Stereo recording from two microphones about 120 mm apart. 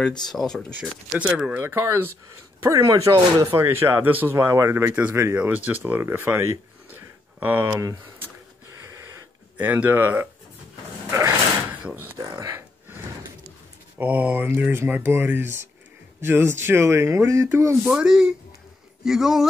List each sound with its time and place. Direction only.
0.3 s a man's voice: 5° left (ahead or behind)
0.7 s speech: 10° right (ahead or behind)
4.4 s speech: 25° right (ahead or behind)
7.8 s speech: 25° right (ahead or behind)
8.8 s a sound: 25° right (ahead or behind)
9.7 s speech: 15° right (ahead or behind)
11.1 s dog: 25° right (ahead or behind)
11.8 s a sound: 15° right (ahead or behind)
12.2 s gasp: 30° right (ahead or behind)
13.9 s speech: 15° right (ahead or behind)
17.8 s a man's voice: 5° right (ahead or behind)